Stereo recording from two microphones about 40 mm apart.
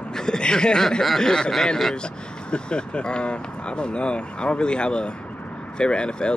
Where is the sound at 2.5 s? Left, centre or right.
Left.